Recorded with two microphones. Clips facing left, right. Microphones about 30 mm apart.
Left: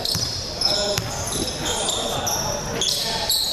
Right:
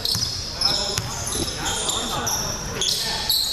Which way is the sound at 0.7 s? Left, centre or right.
Centre.